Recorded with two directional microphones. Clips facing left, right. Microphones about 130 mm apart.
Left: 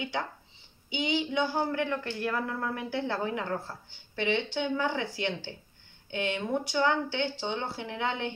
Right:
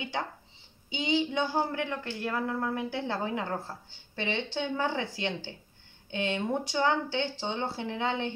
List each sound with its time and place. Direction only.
0.8 s a woman's voice: 25° right (ahead or behind)